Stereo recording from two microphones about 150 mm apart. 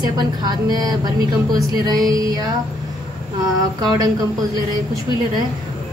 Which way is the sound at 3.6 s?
25° right (ahead or behind).